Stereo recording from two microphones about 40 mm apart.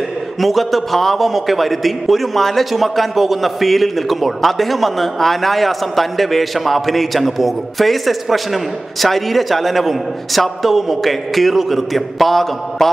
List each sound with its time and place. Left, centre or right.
0.4 s a man's voice: centre